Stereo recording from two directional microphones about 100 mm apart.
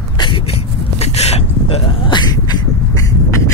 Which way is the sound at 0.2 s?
65° left (ahead or behind).